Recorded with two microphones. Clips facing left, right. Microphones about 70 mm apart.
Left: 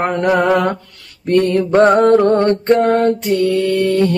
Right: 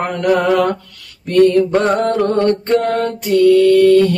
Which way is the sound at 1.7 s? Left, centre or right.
Left.